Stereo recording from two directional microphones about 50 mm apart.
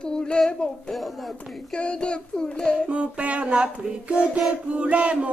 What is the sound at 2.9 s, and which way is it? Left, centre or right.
Child singing, right.